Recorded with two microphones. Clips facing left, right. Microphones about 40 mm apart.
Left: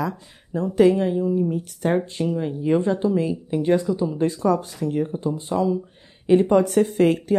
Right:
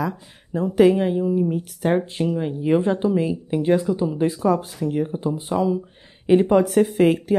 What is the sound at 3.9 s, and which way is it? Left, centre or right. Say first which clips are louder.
Speech: right 1 dB; right.